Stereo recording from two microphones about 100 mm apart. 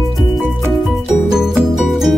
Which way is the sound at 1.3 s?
5° right (ahead or behind).